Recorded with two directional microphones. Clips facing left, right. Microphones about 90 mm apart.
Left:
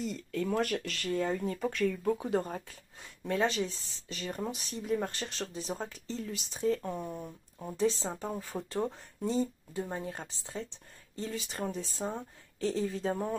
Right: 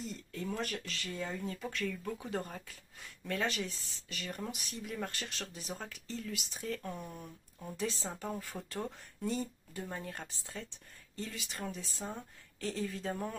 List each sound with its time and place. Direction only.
0.0 s speech: 80° left; by 2.1 s 50° left (ahead or behind)
2.1 s speech: 25° left (ahead or behind)